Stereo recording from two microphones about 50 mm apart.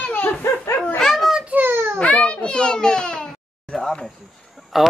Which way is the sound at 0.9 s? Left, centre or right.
Centre.